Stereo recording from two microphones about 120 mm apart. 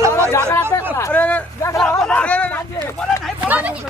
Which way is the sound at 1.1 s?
10° left (ahead or behind).